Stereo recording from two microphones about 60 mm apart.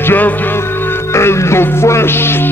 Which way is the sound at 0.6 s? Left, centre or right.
Left.